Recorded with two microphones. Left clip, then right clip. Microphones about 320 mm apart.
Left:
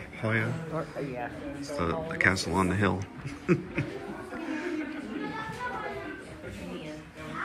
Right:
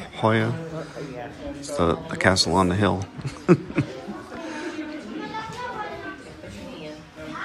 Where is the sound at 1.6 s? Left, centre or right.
Centre.